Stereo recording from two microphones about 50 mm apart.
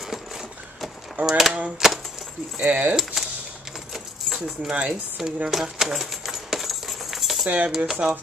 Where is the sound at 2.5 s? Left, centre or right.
Right.